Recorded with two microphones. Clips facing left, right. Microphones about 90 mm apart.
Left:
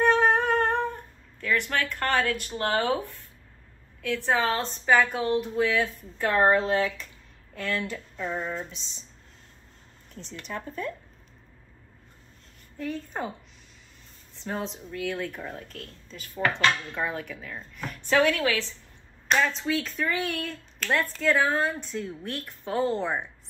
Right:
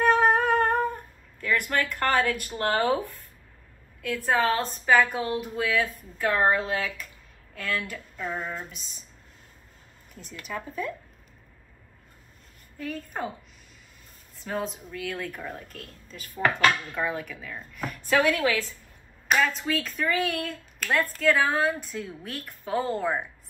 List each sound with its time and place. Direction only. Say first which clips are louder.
0.0 s humming: right 1 dB; 5° right (ahead or behind)
2.3 s speech: right 1 dB; 45° right (ahead or behind)
4.3 s speech: right 2 dB; 5° right (ahead or behind)
6.5 s speech: left 4 dB; 30° left (ahead or behind)
8.2 s speech: left 1 dB; 5° right (ahead or behind)
8.7 s speech: left 1 dB; 50° right (ahead or behind)
10.1 s speech: even; 5° right (ahead or behind)
12.7 s speech: left 1 dB; 5° right (ahead or behind)
14.4 s speech: right 1 dB; 5° right (ahead or behind)
15.7 s speech: left 1 dB; 45° right (ahead or behind)
16.1 s speech: right 2 dB; 5° right (ahead or behind)